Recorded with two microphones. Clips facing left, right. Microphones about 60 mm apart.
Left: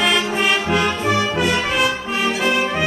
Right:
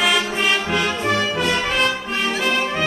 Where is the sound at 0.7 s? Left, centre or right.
Centre.